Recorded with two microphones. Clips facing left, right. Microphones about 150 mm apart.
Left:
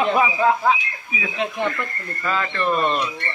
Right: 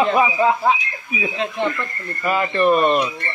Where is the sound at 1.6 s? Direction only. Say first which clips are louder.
Right 2 dB; 15° right (ahead or behind).